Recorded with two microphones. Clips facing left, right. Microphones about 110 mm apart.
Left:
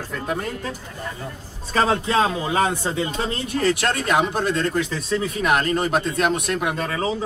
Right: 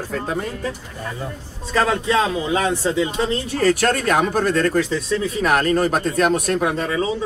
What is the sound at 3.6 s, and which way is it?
Speech, 45° right (ahead or behind).